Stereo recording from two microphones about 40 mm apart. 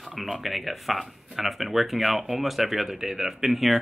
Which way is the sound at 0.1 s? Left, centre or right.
Centre.